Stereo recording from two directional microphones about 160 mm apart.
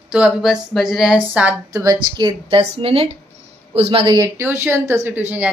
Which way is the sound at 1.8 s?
25° right (ahead or behind).